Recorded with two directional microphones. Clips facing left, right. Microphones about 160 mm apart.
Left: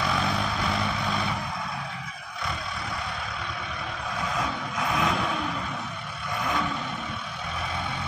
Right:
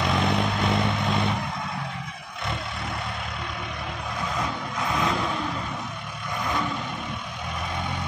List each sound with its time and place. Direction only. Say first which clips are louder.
0.0 s vehicle: right 3 dB; 20° right (ahead or behind)
4.4 s vehicle: even; centre (ahead or behind)